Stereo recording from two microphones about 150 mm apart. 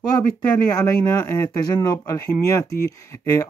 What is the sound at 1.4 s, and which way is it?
Speech, 25° left (ahead or behind).